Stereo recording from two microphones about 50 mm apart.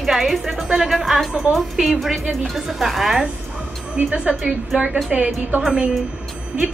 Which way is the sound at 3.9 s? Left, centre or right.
Right.